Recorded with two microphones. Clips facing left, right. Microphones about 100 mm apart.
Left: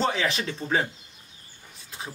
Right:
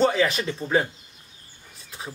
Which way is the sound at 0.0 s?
Centre (ahead or behind).